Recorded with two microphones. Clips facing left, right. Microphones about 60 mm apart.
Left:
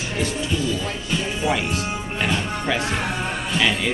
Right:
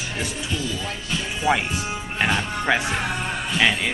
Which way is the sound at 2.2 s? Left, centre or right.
Right.